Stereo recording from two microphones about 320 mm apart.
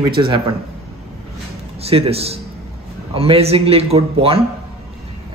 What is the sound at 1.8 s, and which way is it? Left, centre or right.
A man's voice, centre.